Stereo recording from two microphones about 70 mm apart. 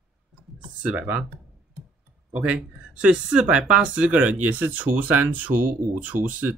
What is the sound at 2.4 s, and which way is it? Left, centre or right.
Speech, centre.